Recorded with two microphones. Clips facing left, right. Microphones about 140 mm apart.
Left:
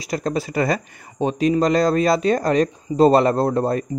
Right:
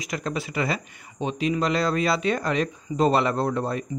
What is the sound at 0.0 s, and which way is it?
Speech, 35° left (ahead or behind).